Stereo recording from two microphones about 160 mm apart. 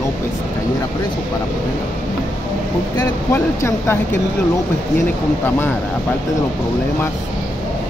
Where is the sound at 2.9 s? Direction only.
15° left (ahead or behind).